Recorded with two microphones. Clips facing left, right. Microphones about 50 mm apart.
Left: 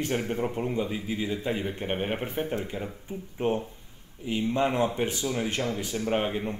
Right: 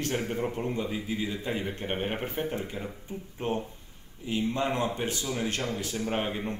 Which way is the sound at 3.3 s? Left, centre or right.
Centre.